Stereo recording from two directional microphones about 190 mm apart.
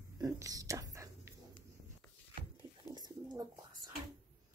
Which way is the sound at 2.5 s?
20° right (ahead or behind).